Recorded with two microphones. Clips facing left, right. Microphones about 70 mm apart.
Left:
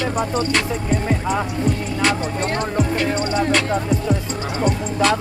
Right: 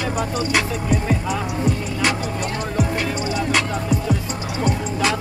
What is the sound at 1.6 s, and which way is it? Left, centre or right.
Music, centre.